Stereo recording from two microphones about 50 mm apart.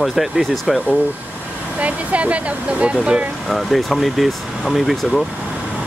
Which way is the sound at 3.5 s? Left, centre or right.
Centre.